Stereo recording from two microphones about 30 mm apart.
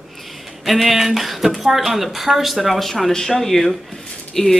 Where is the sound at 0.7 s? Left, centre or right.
Centre.